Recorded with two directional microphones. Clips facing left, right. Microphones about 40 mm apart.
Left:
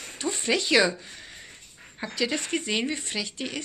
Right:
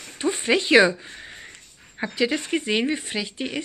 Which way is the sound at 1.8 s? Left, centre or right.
Centre.